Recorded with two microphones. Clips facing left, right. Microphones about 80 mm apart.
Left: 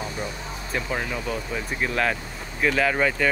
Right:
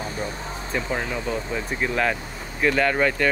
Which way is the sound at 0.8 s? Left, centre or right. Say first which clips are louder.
Right 1 dB; right.